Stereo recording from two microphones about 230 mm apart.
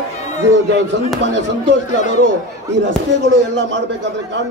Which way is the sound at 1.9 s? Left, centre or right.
Left.